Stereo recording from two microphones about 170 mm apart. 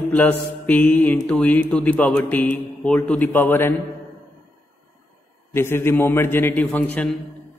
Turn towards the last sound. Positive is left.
turn(degrees=10)  # may be behind; listen again after turning